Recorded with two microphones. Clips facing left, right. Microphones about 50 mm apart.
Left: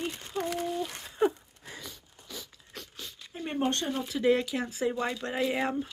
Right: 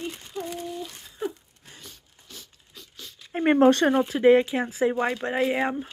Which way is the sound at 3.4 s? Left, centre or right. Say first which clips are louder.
Right 12 dB; right.